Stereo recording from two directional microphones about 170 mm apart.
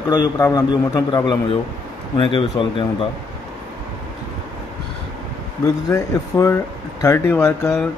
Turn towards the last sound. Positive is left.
turn(degrees=15)  # may be behind; listen again after turning